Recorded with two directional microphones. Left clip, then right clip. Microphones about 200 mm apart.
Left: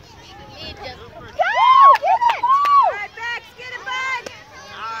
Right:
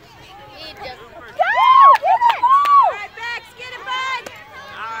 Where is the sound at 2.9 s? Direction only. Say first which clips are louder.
Even; 5° left (ahead or behind).